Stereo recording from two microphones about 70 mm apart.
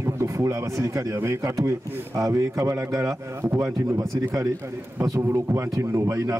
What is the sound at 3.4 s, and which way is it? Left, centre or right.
Speech, right.